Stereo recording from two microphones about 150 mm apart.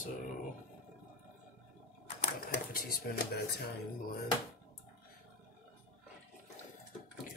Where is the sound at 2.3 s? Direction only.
80° left.